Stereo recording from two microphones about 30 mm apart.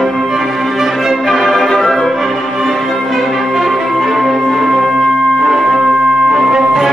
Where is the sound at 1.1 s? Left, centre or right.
Centre.